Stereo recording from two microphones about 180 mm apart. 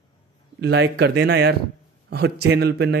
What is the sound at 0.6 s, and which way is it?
Speech, 80° right.